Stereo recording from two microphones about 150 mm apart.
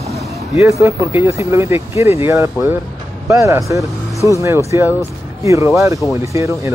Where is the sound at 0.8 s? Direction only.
15° right (ahead or behind).